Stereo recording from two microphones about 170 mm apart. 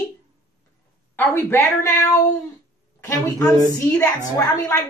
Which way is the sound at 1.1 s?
10° left (ahead or behind).